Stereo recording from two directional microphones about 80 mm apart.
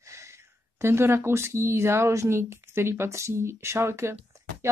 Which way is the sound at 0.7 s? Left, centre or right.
Right.